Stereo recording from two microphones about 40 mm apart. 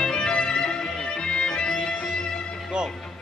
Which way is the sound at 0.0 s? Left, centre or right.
Centre.